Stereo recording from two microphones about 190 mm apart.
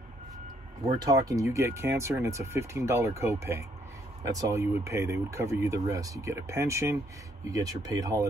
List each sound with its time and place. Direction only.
1.0 s speech: 20° right (ahead or behind)